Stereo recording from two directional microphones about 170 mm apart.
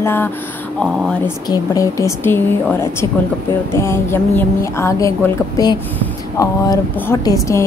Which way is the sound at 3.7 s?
15° left (ahead or behind).